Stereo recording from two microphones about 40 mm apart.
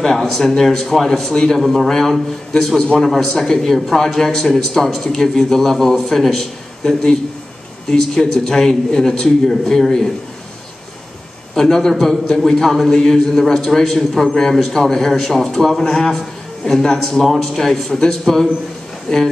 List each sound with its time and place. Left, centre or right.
0.0 s a man's voice: centre
1.9 s a man's voice: centre
3.1 s a man's voice: centre
7.9 s a man's voice: centre
11.5 s a man's voice: centre